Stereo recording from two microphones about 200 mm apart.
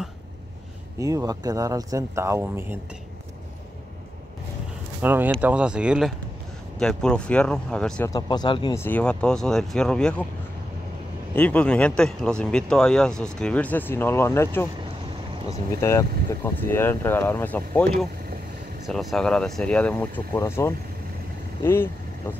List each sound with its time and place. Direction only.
0.9 s speech: 15° right (ahead or behind)
5.0 s speech: 10° right (ahead or behind)
8.1 s speech: 20° left (ahead or behind)
8.8 s speech: 5° left (ahead or behind)
11.3 s speech: 5° left (ahead or behind)
18.9 s speech: centre (ahead or behind)